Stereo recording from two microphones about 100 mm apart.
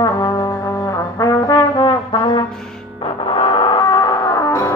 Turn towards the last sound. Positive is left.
turn(degrees=30)  # may be behind; listen again after turning